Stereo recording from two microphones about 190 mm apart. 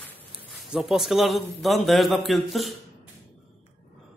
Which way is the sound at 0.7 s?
Centre (ahead or behind).